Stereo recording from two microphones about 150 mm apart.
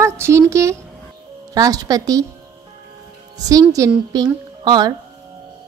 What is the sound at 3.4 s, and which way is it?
A woman's voice, 25° right (ahead or behind).